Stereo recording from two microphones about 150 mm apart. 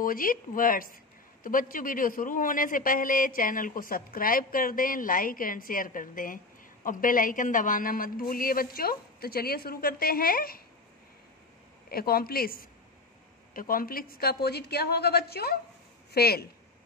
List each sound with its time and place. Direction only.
0.0 s a man's voice: 70° left (ahead or behind)
11.9 s a woman's voice: 85° left